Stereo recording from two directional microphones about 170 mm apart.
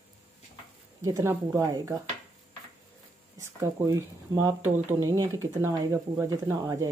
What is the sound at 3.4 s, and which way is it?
Speech, 20° right (ahead or behind).